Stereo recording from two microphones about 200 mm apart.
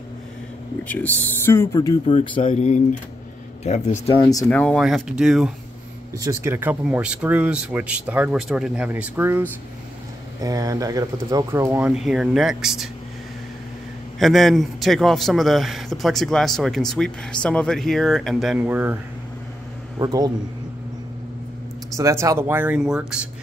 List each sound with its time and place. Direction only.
0.8 s speech: 10° left (ahead or behind)
2.5 s speech: 35° left (ahead or behind); by 4.5 s 20° left (ahead or behind)
4.5 s a man's voice: 5° left (ahead or behind)
6.1 s speech: 15° right (ahead or behind)
14.1 s a man's voice: centre (ahead or behind)
20.0 s speech: 20° right (ahead or behind)
21.9 s speech: 15° right (ahead or behind)